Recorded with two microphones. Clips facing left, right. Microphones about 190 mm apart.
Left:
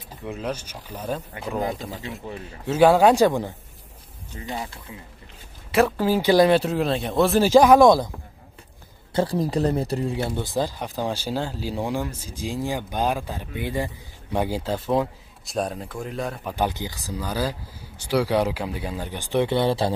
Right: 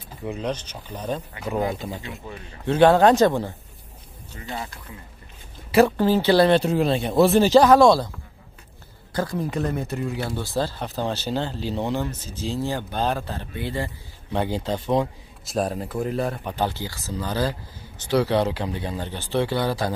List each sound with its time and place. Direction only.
0.2 s speech: centre (ahead or behind); by 4.7 s 20° left (ahead or behind)
5.7 s speech: centre (ahead or behind); by 8.1 s 15° left (ahead or behind)
9.1 s speech: 30° left (ahead or behind); by 16.5 s centre (ahead or behind)
16.5 s speech: 15° left (ahead or behind)